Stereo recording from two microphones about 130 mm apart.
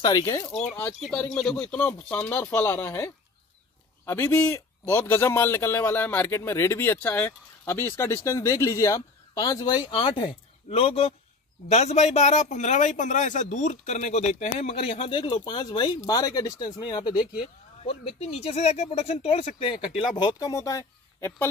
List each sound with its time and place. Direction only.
0.0 s a man's voice: 30° left (ahead or behind)
0.5 s a man's voice: 5° left (ahead or behind); by 9.8 s 30° left (ahead or behind)
9.8 s speech: 40° left (ahead or behind)
11.7 s a man's voice: 60° left (ahead or behind); by 21.5 s 20° left (ahead or behind)